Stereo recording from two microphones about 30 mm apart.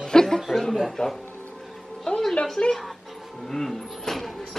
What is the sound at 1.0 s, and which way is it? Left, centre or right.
Speech, left.